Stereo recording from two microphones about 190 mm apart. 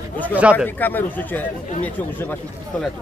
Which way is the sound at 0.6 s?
10° left (ahead or behind).